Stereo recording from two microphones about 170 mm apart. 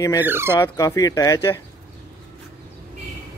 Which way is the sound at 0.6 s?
20° left (ahead or behind).